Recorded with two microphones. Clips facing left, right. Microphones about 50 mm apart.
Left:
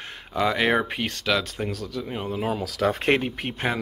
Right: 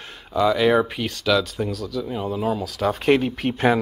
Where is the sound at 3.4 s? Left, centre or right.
Left.